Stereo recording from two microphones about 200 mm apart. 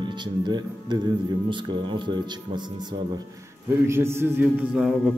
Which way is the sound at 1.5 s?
25° right (ahead or behind).